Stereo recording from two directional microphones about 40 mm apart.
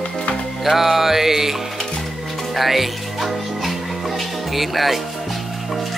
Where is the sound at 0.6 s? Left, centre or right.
Centre.